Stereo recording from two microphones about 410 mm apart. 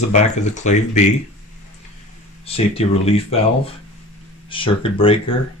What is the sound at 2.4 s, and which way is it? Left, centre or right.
Speech, centre.